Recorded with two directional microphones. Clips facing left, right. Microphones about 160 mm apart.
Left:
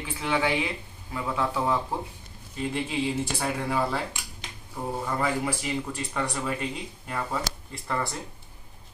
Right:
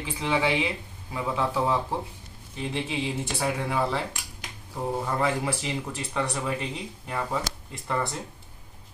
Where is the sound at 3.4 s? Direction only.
Centre (ahead or behind).